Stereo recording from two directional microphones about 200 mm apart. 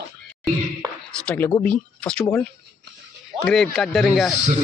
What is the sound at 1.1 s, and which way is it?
Speech, 5° left (ahead or behind).